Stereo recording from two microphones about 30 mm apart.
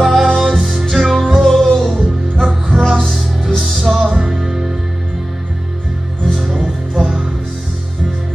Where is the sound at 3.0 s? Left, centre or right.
Centre.